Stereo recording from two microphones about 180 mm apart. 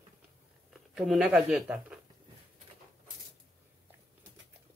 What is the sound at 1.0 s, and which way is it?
Speech, centre (ahead or behind).